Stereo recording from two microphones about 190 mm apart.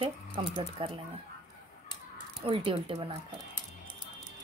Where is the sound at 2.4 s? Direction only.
30° right (ahead or behind).